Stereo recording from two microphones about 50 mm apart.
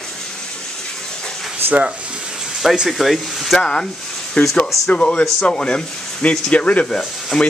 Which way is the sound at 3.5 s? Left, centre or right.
Centre.